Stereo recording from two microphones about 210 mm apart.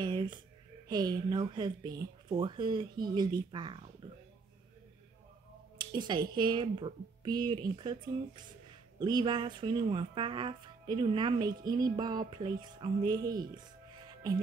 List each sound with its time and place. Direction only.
0.0 s a sound: 20° right (ahead or behind)
0.8 s speech: 20° right (ahead or behind)
5.8 s speech: 20° right (ahead or behind)
9.0 s speech: 20° right (ahead or behind)